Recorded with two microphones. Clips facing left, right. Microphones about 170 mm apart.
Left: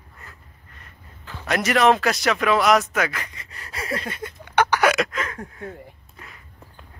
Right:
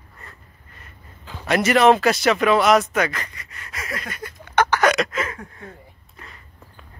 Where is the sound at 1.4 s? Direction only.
Centre (ahead or behind).